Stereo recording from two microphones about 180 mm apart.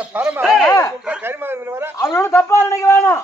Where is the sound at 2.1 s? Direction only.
15° left (ahead or behind).